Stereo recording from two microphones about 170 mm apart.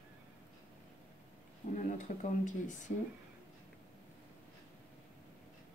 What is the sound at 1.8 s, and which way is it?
Speech, 45° left (ahead or behind).